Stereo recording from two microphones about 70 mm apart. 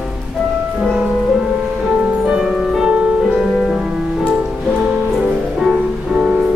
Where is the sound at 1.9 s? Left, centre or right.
Centre.